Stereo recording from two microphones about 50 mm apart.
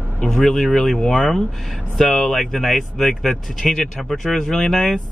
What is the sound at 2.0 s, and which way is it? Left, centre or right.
Speech, centre.